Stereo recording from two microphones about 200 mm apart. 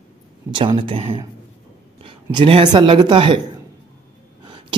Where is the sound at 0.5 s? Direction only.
25° right (ahead or behind).